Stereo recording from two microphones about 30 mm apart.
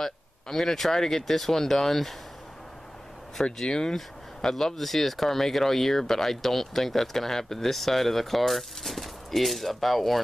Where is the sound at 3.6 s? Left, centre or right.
Left.